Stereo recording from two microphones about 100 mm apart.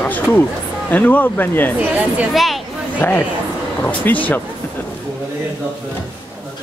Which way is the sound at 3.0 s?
20° left (ahead or behind).